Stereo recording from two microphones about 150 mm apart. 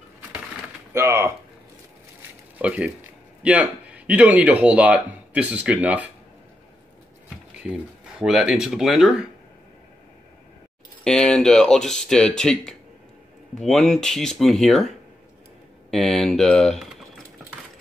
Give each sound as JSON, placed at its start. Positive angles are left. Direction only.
{"t": 0.9, "sound": "speech", "side_deg": -20}
{"t": 2.6, "sound": "speech", "side_deg": -10}
{"t": 8.2, "sound": "speech", "side_deg": -5}
{"t": 11.1, "sound": "speech", "side_deg": 5}
{"t": 15.9, "sound": "speech", "side_deg": 0}